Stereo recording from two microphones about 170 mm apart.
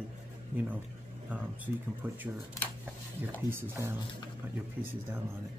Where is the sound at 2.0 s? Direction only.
10° right (ahead or behind).